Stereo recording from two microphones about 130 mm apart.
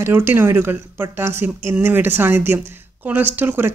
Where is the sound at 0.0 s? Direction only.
15° right (ahead or behind).